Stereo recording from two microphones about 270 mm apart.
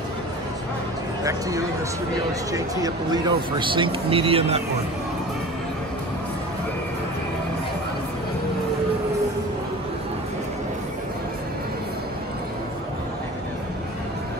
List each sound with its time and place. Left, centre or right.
1.2 s speech: centre